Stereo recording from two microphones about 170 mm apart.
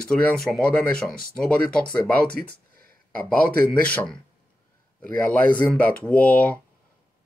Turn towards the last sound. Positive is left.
turn(degrees=10)  # may be behind; listen again after turning